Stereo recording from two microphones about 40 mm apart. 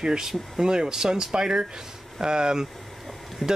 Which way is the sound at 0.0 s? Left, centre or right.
Centre.